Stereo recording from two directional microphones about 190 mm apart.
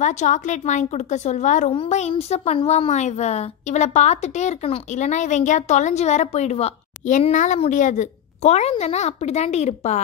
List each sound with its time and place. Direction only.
0.0 s a woman's voice: 40° left (ahead or behind)